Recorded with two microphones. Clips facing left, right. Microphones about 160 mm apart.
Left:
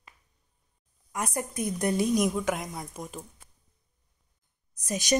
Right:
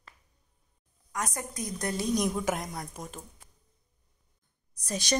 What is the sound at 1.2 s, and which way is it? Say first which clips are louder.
Speech: left 5 dB; 30° left (ahead or behind).